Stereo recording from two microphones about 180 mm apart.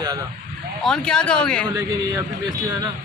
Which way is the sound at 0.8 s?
5° left (ahead or behind).